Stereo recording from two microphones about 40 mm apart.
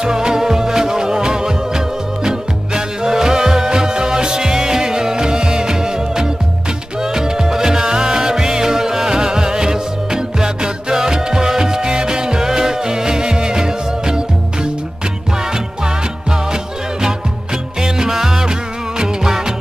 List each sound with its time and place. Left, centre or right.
0.0 s music: centre
17.7 s music: centre